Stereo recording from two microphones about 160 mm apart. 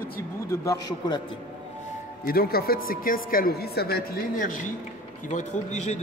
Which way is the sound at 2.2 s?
70° left (ahead or behind).